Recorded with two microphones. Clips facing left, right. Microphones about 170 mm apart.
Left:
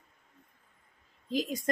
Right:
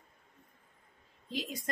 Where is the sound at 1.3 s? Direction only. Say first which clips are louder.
Left 7 dB; 45° left (ahead or behind).